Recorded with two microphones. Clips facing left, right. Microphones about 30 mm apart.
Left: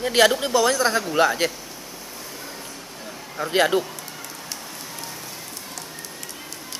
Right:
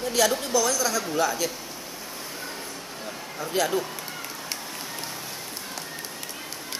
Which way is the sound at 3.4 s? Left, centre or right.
Left.